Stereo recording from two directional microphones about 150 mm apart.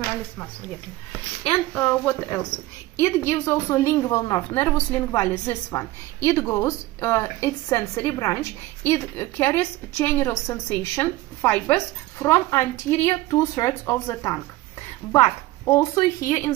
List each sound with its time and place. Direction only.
1.5 s a woman's voice: 15° left (ahead or behind)